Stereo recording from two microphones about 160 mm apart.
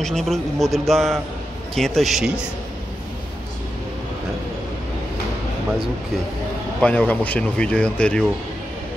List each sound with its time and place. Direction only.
0.0 s a man's voice: centre (ahead or behind)
6.8 s speech: 10° left (ahead or behind)